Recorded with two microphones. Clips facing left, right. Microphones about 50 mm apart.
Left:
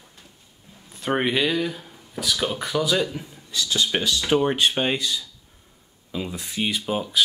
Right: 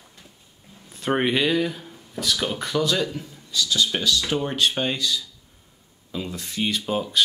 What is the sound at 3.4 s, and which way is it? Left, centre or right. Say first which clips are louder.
Speech: right 1 dB; left.